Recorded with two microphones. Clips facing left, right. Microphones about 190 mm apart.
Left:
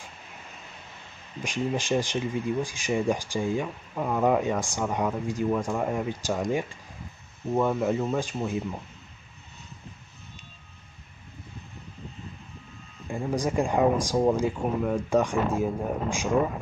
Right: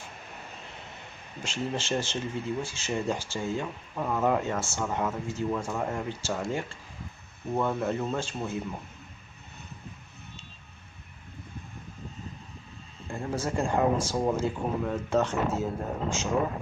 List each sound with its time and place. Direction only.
1.4 s speech: 15° left (ahead or behind)
13.1 s speech: 15° left (ahead or behind)